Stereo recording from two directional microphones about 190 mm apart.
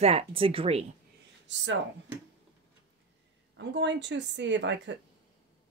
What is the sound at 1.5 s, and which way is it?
Speech, 70° right (ahead or behind).